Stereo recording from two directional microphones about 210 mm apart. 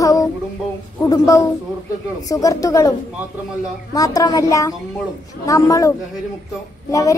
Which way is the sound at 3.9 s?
15° left (ahead or behind).